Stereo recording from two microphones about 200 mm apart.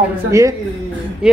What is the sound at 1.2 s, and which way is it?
Speech, 5° right (ahead or behind).